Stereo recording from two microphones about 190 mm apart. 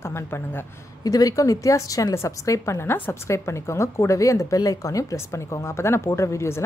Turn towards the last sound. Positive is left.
turn(degrees=15)  # may be behind; listen again after turning